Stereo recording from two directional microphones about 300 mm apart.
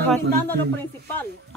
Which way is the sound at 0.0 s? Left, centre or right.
Centre.